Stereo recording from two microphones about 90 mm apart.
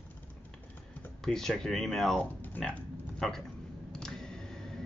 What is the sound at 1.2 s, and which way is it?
Speech, 5° left (ahead or behind).